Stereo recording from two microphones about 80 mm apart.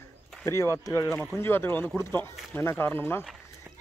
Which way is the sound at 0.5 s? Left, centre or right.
Left.